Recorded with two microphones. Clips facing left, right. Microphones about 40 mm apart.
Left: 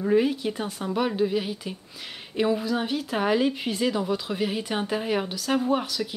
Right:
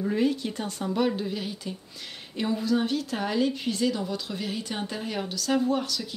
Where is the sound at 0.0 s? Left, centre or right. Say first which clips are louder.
Left 3 dB; centre.